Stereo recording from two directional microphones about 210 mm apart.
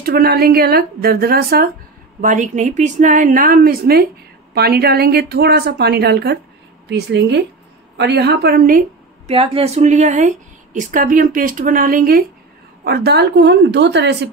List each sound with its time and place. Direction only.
0.0 s speech: 45° right (ahead or behind)
2.2 s a woman's voice: 35° right (ahead or behind)
9.3 s a woman's voice: 25° right (ahead or behind); by 14.3 s 55° right (ahead or behind)